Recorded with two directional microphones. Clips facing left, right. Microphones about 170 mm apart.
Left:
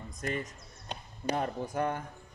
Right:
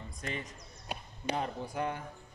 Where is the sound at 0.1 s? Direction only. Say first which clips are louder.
Left 6 dB; 45° left (ahead or behind).